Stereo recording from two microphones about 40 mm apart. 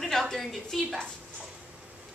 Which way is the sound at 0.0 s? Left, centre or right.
Centre.